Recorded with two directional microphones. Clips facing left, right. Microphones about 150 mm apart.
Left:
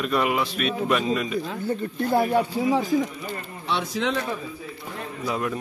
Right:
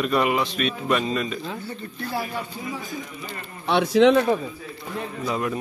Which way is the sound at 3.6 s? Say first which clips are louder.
Right 10 dB; 65° right (ahead or behind).